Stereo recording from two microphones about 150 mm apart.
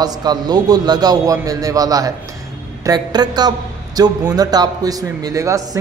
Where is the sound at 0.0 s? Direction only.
25° right (ahead or behind).